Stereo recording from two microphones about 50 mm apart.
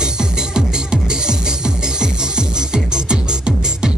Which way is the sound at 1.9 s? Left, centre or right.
Centre.